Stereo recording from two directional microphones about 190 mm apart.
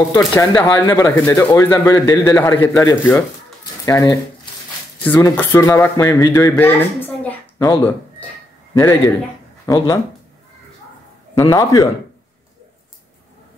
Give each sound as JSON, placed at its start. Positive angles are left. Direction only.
{"t": 0.1, "sound": "speech", "side_deg": 15}
{"t": 11.3, "sound": "speech", "side_deg": 15}